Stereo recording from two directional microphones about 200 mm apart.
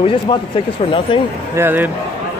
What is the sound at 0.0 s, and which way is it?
Speech, 25° left (ahead or behind).